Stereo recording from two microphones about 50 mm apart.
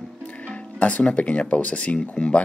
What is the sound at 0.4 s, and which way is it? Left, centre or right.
Speech, left.